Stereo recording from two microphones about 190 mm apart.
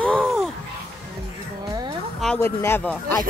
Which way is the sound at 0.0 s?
5° left (ahead or behind).